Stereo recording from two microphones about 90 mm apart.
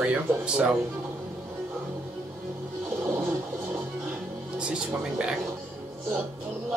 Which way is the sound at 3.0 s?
20° right (ahead or behind).